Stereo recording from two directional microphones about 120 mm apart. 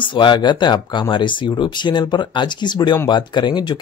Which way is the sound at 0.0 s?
40° left (ahead or behind).